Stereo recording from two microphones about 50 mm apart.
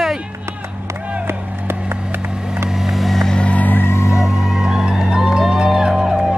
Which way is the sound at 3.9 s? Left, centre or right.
Left.